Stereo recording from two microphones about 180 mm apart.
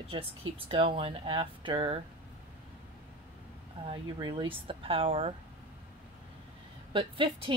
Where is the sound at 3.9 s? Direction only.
25° right (ahead or behind).